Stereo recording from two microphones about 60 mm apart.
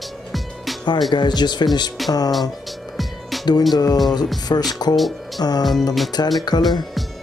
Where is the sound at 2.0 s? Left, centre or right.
Centre.